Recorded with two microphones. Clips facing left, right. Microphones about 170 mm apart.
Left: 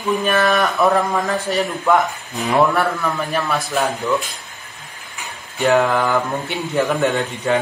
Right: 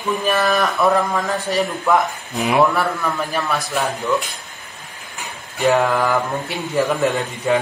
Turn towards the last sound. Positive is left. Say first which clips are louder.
# even
turn(degrees=0)  # may be behind; listen again after turning